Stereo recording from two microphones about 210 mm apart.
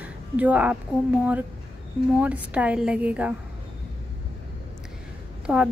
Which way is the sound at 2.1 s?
5° right (ahead or behind).